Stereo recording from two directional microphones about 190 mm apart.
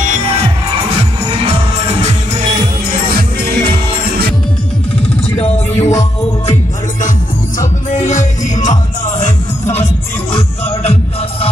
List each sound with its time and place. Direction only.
1.4 s music: 35° right (ahead or behind)
2.9 s music: 50° right (ahead or behind)
5.3 s music: 30° left (ahead or behind)
7.5 s music: 40° left (ahead or behind)